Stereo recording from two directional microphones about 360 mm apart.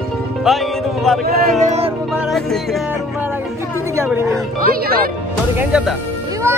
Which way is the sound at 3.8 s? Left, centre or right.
Centre.